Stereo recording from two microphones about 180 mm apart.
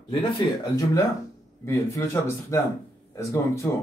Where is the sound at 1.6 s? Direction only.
15° left (ahead or behind).